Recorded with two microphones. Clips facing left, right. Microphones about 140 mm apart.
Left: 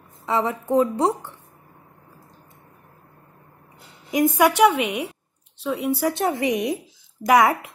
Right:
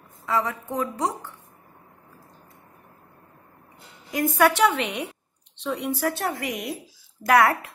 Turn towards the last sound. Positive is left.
turn(degrees=15)  # may be behind; listen again after turning